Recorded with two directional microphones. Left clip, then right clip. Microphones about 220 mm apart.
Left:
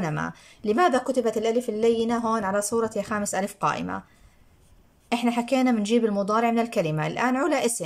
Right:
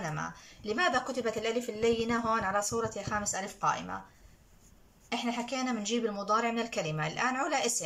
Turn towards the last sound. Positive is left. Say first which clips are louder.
# left 7 dB
turn(degrees=35)  # may be behind; listen again after turning